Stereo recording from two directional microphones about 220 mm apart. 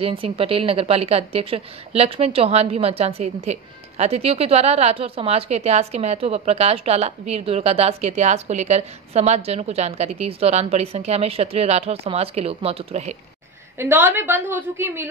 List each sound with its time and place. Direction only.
0.0 s a woman's voice: 25° right (ahead or behind)
13.7 s a woman's voice: 10° right (ahead or behind)